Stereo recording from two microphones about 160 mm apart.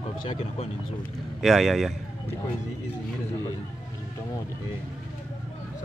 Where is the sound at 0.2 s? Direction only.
35° left (ahead or behind).